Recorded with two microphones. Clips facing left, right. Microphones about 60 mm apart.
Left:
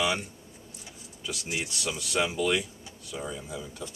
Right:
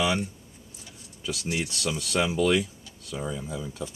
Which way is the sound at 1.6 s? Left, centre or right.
Centre.